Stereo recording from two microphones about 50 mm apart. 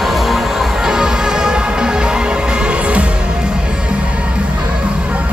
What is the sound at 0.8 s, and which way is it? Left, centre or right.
Music, centre.